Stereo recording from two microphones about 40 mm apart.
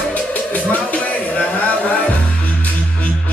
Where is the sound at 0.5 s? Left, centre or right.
Left.